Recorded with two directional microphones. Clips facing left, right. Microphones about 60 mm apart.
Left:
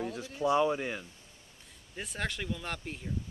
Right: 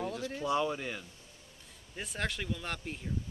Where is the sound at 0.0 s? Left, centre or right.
Left.